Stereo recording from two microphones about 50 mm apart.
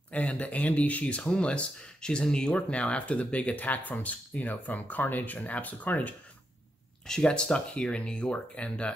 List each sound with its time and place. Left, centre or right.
0.1 s speech: left
7.1 s speech: centre